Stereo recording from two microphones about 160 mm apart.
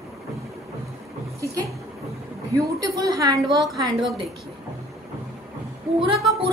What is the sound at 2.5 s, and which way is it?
A woman's voice, 20° right (ahead or behind).